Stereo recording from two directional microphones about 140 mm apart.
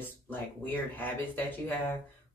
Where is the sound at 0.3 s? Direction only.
15° left (ahead or behind).